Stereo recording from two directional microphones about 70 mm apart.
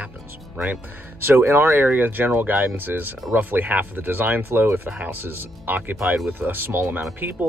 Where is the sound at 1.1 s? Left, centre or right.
Right.